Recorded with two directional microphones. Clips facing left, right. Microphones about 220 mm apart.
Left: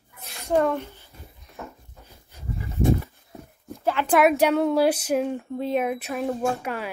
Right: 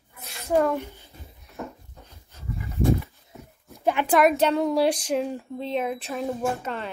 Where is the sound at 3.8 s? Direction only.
15° right (ahead or behind).